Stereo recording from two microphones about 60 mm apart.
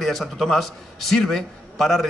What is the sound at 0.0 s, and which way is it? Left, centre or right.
A man's voice, centre.